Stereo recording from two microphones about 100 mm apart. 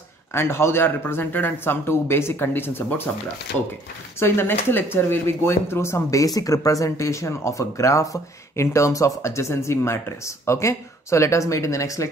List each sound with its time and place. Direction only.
0.3 s speech: 25° left (ahead or behind)
4.2 s speech: 20° left (ahead or behind)